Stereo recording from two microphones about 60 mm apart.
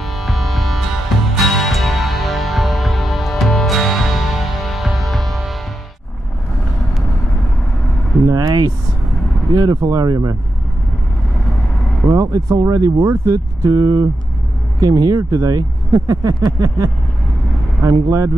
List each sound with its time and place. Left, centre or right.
0.0 s music: centre
8.3 s speech: right
12.1 s speech: right
17.8 s speech: right